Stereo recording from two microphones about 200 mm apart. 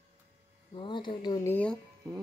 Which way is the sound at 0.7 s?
25° left (ahead or behind).